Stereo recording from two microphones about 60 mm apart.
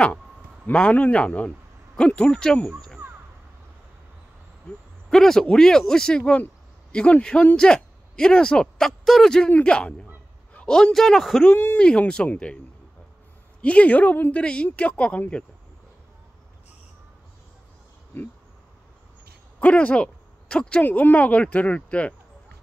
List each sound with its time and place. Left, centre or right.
0.7 s speech: left
5.1 s speech: centre
9.0 s speech: centre
9.5 s a man's voice: centre
11.5 s speech: left
13.6 s speech: left
18.1 s speech: left
19.6 s speech: left
20.8 s speech: left